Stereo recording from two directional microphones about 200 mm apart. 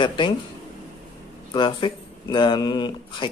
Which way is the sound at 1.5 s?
25° left (ahead or behind).